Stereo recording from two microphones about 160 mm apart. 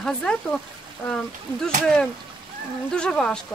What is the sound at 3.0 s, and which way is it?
Speech, 5° left (ahead or behind).